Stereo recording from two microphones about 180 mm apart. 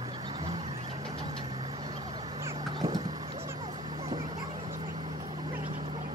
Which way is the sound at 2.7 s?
20° right (ahead or behind).